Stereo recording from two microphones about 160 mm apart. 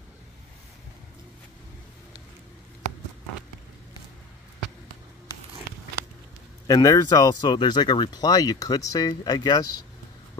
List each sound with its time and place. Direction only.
6.7 s speech: 25° left (ahead or behind)